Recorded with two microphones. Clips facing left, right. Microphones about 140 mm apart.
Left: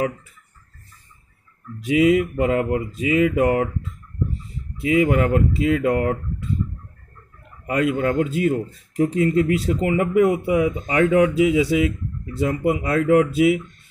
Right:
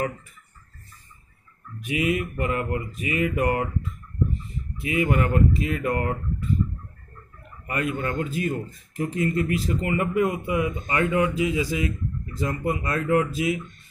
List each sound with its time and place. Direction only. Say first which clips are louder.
1.8 s mantra: left 8 dB; 90° left
4.7 s mantra: left 6 dB; 75° left (ahead or behind)
7.6 s speech: left 7 dB; 90° left
12.8 s speech: left 6 dB; 90° left